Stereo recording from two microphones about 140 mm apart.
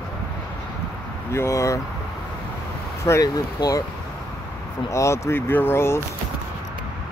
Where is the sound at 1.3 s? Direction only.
20° left (ahead or behind).